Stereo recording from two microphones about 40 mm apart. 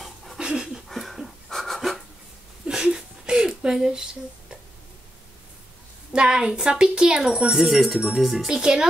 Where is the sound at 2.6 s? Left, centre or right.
Centre.